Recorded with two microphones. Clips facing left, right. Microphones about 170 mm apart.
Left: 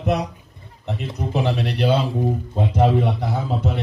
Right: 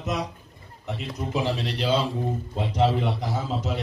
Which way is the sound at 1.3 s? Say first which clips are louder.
Left 4 dB; 60° left (ahead or behind).